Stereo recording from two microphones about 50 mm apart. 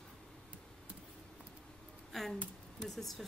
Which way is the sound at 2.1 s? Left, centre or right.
Centre.